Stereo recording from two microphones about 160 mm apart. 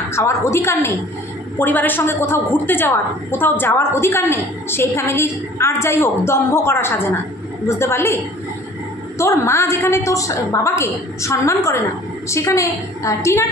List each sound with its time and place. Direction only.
0.1 s a woman's voice: 15° left (ahead or behind)
9.2 s a woman's voice: 15° left (ahead or behind)